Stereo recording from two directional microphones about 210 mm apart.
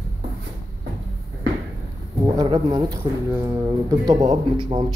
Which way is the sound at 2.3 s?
20° right (ahead or behind).